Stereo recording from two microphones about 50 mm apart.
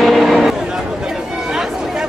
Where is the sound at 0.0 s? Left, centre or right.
Centre.